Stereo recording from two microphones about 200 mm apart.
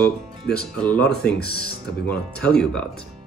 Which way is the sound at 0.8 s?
5° left (ahead or behind).